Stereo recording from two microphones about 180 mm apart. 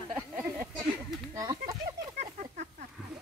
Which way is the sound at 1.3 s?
20° right (ahead or behind).